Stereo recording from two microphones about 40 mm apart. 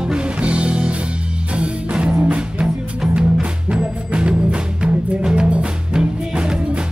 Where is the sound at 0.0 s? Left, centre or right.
Right.